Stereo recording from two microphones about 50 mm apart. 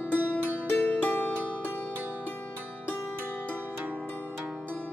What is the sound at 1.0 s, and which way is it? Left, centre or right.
Music, left.